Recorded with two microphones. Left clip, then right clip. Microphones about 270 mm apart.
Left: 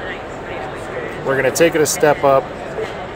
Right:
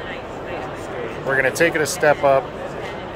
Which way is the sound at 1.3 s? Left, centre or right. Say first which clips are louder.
Left 3 dB; left.